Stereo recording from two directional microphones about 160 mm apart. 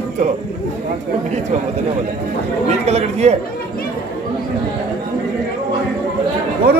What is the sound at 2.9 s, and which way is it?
Speech, 45° right (ahead or behind).